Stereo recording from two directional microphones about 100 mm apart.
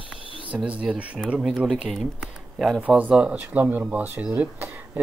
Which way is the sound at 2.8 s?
15° right (ahead or behind).